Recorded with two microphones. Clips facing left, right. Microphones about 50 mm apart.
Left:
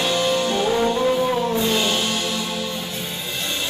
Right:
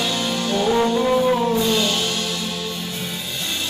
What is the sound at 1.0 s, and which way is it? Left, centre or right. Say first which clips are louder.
Music: right 2 dB; centre.